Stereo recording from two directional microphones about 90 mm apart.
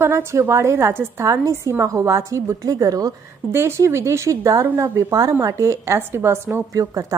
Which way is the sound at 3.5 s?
30° right (ahead or behind).